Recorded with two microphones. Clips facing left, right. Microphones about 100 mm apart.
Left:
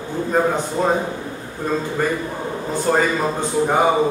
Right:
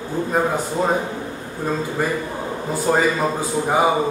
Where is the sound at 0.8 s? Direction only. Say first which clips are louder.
Left 1 dB; 10° right (ahead or behind).